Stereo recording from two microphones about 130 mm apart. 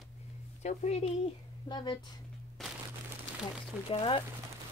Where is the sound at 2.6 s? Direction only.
Centre (ahead or behind).